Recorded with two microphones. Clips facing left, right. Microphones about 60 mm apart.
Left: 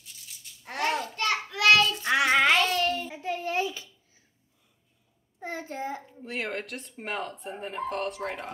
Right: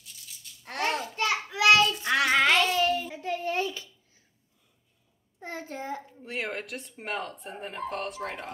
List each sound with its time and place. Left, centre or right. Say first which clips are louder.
0.7 s babbling: left 1 dB; centre
1.1 s a sound: even; centre
1.5 s child singing: even; centre
2.0 s child singing: left 3 dB; centre
5.6 s a child's voice: even; centre